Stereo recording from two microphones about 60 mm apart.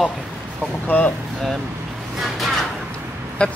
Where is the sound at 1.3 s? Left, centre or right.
Centre.